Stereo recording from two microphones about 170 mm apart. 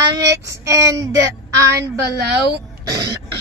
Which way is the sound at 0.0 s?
20° right (ahead or behind).